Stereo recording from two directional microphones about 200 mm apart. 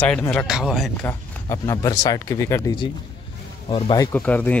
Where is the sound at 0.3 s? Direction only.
Centre (ahead or behind).